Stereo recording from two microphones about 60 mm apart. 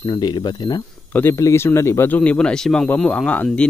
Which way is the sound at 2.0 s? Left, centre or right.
Left.